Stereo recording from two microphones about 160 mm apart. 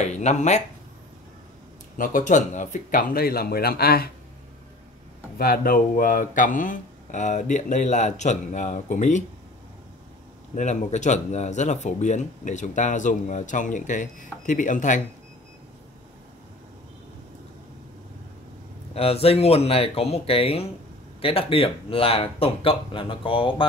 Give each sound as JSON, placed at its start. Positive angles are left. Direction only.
{"t": 0.0, "sound": "speech", "side_deg": 45}
{"t": 2.0, "sound": "speech", "side_deg": 55}
{"t": 5.4, "sound": "speech", "side_deg": 65}
{"t": 10.5, "sound": "speech", "side_deg": 45}
{"t": 18.9, "sound": "speech", "side_deg": 40}